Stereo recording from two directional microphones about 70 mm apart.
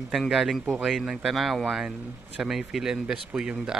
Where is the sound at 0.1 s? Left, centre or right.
Centre.